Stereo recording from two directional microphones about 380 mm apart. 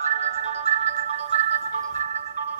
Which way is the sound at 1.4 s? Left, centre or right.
Centre.